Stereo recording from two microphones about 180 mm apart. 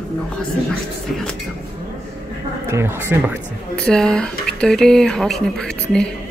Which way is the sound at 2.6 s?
15° right (ahead or behind).